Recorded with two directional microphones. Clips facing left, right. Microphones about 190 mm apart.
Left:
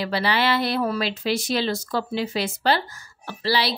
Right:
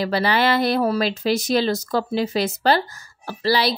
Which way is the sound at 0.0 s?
45° right (ahead or behind).